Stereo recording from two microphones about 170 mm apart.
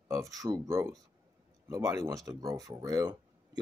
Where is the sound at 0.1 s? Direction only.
20° right (ahead or behind).